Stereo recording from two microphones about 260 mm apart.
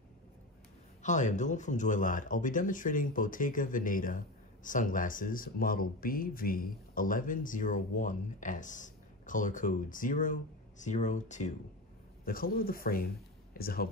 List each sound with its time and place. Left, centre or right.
1.0 s speech: left